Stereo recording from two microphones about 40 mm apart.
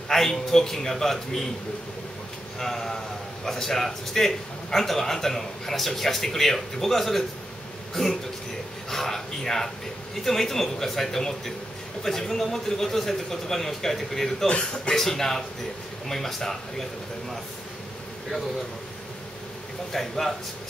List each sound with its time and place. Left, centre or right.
0.1 s a man's voice: centre
2.6 s a man's voice: centre
19.9 s a man's voice: centre